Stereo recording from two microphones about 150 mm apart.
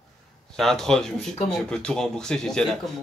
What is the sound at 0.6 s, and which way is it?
Speech, 5° left (ahead or behind).